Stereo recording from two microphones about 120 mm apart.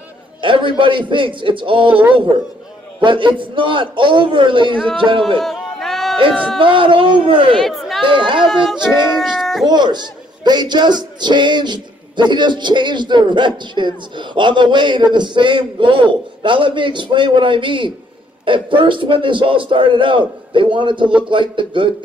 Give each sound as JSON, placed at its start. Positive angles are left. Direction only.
{"t": 0.4, "sound": "a man's voice", "side_deg": -45}
{"t": 3.0, "sound": "a man's voice", "side_deg": -40}
{"t": 5.4, "sound": "a sound", "side_deg": 5}
{"t": 6.6, "sound": "a man's voice", "side_deg": -45}
{"t": 7.5, "sound": "chatter", "side_deg": 0}
{"t": 8.0, "sound": "speech", "side_deg": -45}
{"t": 9.2, "sound": "a sound", "side_deg": 0}
{"t": 9.7, "sound": "a man's voice", "side_deg": -35}